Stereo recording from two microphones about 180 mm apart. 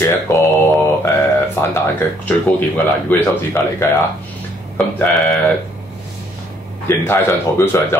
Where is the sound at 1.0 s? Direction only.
15° left (ahead or behind).